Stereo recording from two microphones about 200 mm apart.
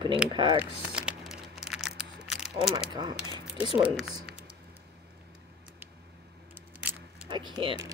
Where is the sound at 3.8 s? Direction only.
5° right (ahead or behind).